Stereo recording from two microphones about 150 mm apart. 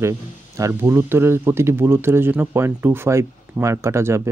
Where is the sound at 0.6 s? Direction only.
20° right (ahead or behind).